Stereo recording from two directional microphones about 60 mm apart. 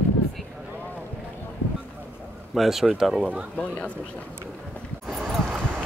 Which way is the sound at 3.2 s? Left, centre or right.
Centre.